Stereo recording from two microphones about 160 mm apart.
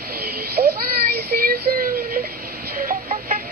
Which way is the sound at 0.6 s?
40° right (ahead or behind).